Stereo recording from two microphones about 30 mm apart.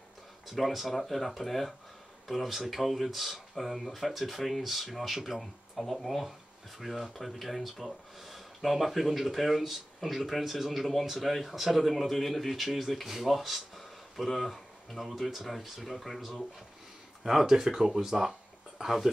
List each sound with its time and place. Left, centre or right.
0.5 s speech: centre
17.2 s speech: centre